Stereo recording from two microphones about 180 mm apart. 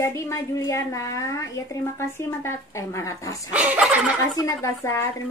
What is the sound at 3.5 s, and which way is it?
Speech, 10° right (ahead or behind).